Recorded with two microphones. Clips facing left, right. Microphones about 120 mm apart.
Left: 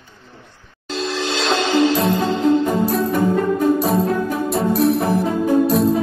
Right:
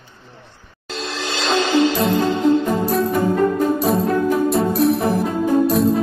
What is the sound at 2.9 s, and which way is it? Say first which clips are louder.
Music: even; centre (ahead or behind).